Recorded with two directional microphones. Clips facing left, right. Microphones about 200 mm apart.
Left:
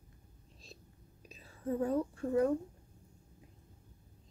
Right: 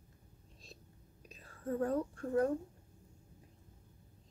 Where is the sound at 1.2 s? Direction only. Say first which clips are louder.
Left 2 dB; 5° left (ahead or behind).